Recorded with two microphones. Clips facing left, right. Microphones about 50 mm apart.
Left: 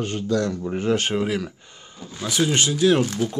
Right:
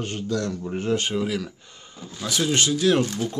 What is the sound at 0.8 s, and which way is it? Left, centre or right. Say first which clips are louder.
Speech: left 2 dB; left.